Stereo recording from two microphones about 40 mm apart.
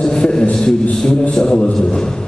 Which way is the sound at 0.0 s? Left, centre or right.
Centre.